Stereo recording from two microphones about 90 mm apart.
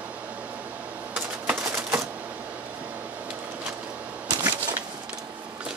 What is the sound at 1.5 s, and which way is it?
Typewriter, 25° right (ahead or behind).